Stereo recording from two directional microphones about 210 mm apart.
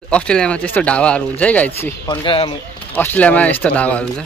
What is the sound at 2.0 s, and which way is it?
Speech, 25° left (ahead or behind).